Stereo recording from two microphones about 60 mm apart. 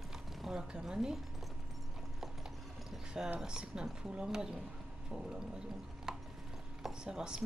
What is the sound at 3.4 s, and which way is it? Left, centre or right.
Speech, centre.